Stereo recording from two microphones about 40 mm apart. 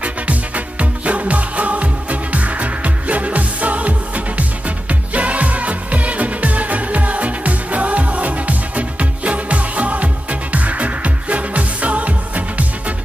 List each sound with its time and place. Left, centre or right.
0.0 s music: right